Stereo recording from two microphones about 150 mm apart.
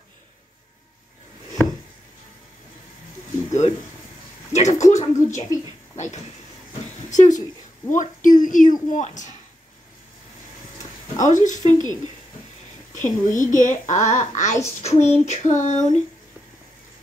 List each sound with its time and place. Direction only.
4.5 s speech: 50° left (ahead or behind)
7.1 s a sound: 55° left (ahead or behind)
7.9 s a child's voice: 60° left (ahead or behind)
11.1 s a child's voice: 55° left (ahead or behind)
11.8 s speech: 30° right (ahead or behind)
12.9 s a child's voice: 60° left (ahead or behind)
14.8 s child singing: 45° left (ahead or behind)